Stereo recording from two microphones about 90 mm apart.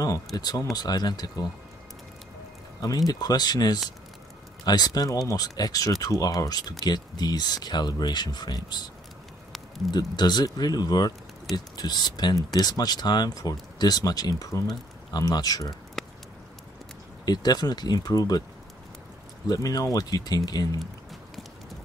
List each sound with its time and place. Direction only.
0.4 s speech: 45° left (ahead or behind)
3.1 s speech: 45° left (ahead or behind)
16.0 s a sound: centre (ahead or behind)
17.2 s speech: 50° left (ahead or behind)
19.4 s speech: 45° left (ahead or behind)